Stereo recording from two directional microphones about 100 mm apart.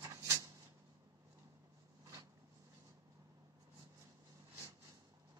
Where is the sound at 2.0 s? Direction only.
35° right (ahead or behind).